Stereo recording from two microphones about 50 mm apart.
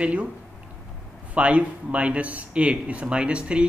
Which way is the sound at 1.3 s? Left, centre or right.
Right.